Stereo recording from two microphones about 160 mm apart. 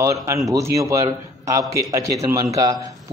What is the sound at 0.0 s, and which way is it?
A man's voice, 20° right (ahead or behind).